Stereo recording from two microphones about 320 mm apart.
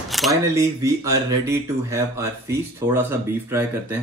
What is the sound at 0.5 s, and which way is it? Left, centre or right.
Speech, centre.